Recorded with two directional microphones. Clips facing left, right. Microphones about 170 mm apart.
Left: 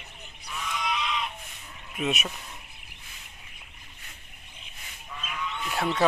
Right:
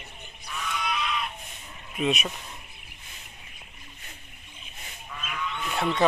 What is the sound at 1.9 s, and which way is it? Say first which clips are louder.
Speech: right 3 dB; 5° left (ahead or behind).